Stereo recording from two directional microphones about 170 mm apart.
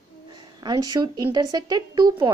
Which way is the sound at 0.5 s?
20° right (ahead or behind).